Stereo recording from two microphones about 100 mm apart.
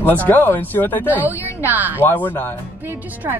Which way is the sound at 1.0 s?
15° right (ahead or behind).